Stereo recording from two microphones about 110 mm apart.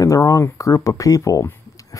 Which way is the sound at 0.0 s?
30° left (ahead or behind).